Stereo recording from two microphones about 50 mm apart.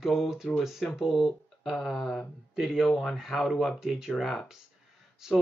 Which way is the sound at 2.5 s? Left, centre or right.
Centre.